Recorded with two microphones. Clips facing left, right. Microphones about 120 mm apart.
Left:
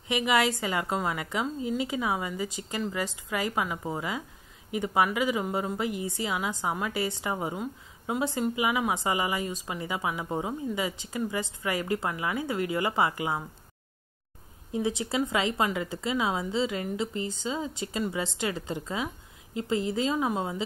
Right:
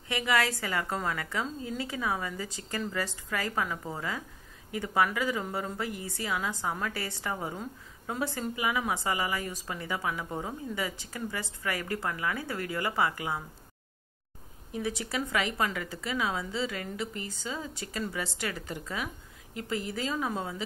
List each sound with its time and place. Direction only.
0.1 s a woman's voice: 20° left (ahead or behind)
14.7 s a woman's voice: 20° left (ahead or behind)